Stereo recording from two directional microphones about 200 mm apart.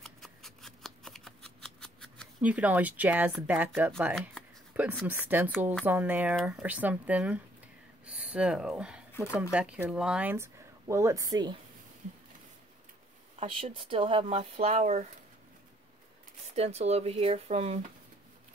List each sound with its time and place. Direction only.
0.0 s shuffling cards: centre (ahead or behind)
2.4 s speech: 5° right (ahead or behind)
4.1 s speech: 5° left (ahead or behind)
5.0 s speech: 10° right (ahead or behind)
8.0 s a sound: 5° right (ahead or behind)
9.2 s speech: 5° right (ahead or behind)
13.4 s speech: 25° right (ahead or behind)
16.5 s speech: 30° right (ahead or behind)